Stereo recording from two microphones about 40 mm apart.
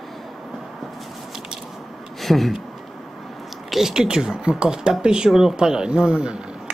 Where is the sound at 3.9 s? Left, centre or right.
Centre.